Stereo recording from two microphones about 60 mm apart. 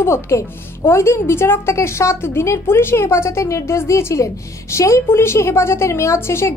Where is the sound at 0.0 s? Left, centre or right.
Left.